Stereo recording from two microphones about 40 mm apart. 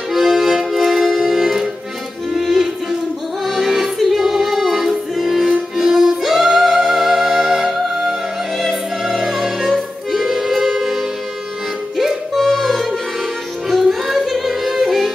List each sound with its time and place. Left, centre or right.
0.1 s accordion: centre
2.4 s music: centre
12.4 s music: centre